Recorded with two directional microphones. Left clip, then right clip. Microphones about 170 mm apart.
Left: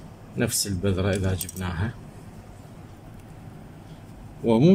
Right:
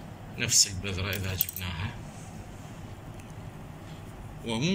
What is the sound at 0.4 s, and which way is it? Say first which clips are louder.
Speech: right 1 dB; 90° left.